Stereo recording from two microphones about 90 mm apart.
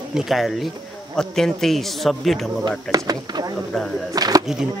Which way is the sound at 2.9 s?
45° right (ahead or behind).